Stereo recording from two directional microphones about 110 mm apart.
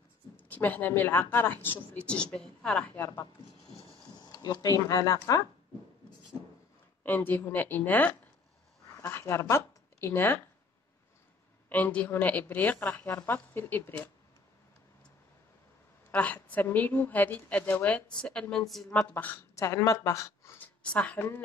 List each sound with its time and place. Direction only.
0.4 s speech: 15° left (ahead or behind)
4.2 s speech: 40° left (ahead or behind)
7.0 s speech: 15° left (ahead or behind)
11.7 s speech: 15° left (ahead or behind)
16.1 s a woman's voice: 15° left (ahead or behind)
18.9 s speech: 15° left (ahead or behind)
19.5 s speech: 30° left (ahead or behind)
20.5 s speech: 15° left (ahead or behind)